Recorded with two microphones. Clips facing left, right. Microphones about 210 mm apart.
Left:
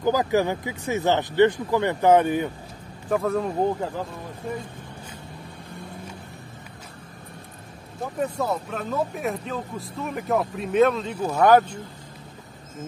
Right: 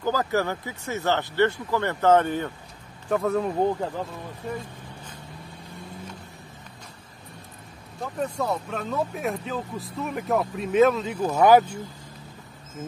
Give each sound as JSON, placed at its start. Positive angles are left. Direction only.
{"t": 0.0, "sound": "speech", "side_deg": 15}
{"t": 3.1, "sound": "speech", "side_deg": 0}
{"t": 8.0, "sound": "speech", "side_deg": 5}